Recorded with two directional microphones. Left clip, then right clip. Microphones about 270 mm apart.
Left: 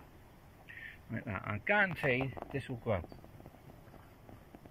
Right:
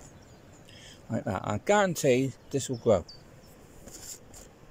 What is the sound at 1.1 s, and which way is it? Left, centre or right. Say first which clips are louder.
Speech: right 9 dB; centre.